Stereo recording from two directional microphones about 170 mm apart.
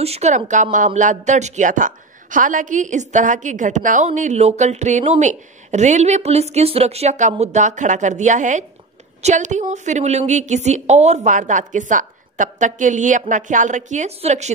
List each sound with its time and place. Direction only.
0.0 s speech: 40° right (ahead or behind)